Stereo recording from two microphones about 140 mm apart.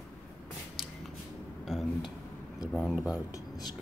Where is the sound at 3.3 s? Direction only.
30° left (ahead or behind).